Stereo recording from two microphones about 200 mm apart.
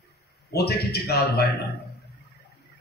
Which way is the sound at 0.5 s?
55° left (ahead or behind).